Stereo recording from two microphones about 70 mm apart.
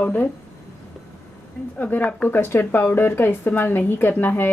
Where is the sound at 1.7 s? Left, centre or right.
Left.